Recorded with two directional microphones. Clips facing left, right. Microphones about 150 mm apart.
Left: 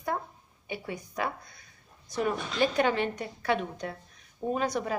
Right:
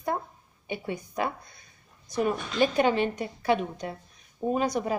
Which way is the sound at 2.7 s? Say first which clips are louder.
Right 3 dB; 20° right (ahead or behind).